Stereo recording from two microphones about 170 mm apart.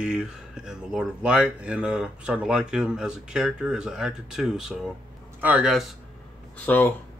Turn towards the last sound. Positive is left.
turn(degrees=10)  # may be behind; listen again after turning